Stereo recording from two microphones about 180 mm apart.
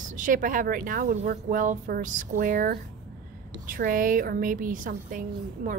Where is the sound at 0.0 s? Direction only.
45° right (ahead or behind).